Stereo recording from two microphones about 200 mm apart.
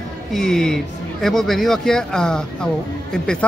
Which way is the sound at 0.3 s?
Centre (ahead or behind).